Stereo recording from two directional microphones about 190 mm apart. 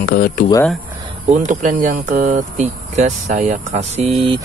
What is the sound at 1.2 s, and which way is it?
Speech, 40° right (ahead or behind).